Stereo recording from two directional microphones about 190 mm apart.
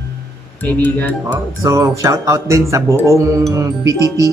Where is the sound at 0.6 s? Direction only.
10° left (ahead or behind).